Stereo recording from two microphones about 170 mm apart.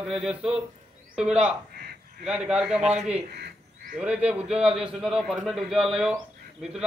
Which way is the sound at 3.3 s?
75° right (ahead or behind).